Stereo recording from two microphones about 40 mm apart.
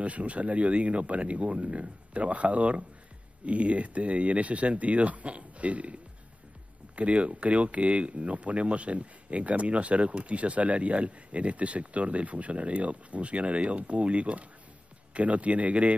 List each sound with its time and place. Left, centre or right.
0.0 s speech: right
7.0 s speech: right